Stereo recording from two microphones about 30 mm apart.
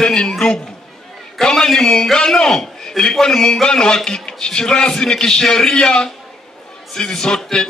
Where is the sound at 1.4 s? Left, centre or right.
Centre.